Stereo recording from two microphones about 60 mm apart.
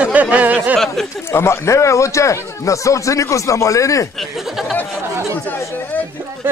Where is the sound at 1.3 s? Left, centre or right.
Left.